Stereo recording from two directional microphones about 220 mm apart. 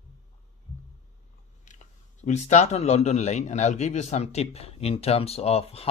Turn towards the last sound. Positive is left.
turn(degrees=25)  # may be behind; listen again after turning